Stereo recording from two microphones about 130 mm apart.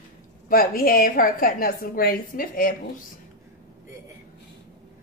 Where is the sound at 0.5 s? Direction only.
90° left.